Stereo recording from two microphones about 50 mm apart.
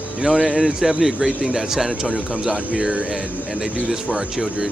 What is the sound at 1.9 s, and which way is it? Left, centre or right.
Speech, centre.